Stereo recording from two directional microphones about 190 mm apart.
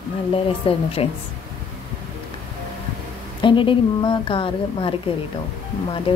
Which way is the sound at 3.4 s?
25° left (ahead or behind).